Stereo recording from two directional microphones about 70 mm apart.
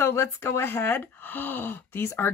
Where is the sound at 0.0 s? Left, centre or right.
Left.